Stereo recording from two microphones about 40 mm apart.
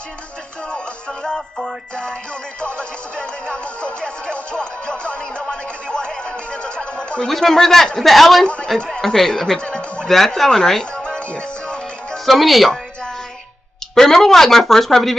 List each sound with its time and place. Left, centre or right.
0.7 s music: left
2.6 s music: left
7.2 s speech: centre
8.7 s speech: centre
9.6 s music: left
10.0 s speech: centre
11.1 s music: left
12.3 s speech: centre
13.9 s speech: centre